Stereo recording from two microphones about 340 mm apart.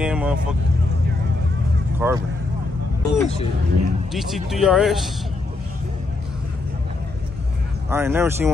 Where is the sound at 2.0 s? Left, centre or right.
Centre.